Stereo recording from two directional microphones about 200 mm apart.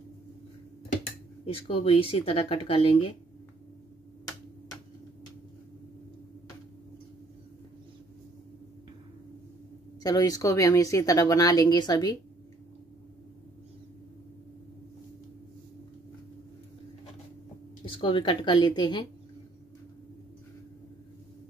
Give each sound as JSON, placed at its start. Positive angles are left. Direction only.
{"t": 1.4, "sound": "speech", "side_deg": 30}
{"t": 10.0, "sound": "speech", "side_deg": 20}
{"t": 17.8, "sound": "speech", "side_deg": 25}